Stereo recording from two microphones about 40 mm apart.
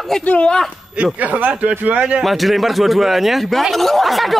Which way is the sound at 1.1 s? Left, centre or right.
Right.